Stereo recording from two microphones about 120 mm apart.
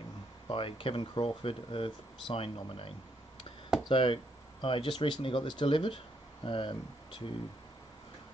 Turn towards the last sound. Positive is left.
turn(degrees=45)  # may be behind; listen again after turning